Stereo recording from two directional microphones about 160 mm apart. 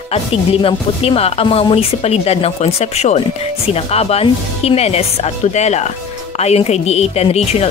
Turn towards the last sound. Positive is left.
turn(degrees=40)  # may be behind; listen again after turning